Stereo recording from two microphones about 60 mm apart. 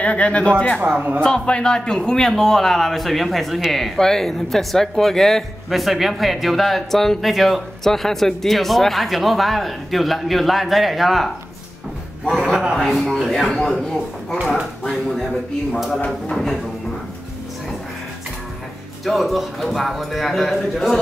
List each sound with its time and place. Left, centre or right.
0.0 s speech: left
0.7 s speech: right
1.2 s a man's voice: centre
12.7 s a man's voice: centre
16.1 s a man's voice: centre
19.0 s a man's voice: centre